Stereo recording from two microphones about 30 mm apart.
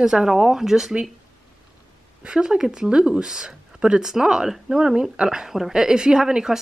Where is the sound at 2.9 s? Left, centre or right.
Right.